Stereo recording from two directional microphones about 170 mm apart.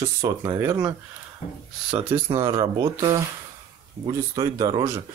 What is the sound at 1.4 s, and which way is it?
Speech, 40° left (ahead or behind).